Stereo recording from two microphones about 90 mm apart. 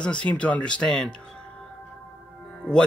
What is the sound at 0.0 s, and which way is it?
Speech, 15° left (ahead or behind).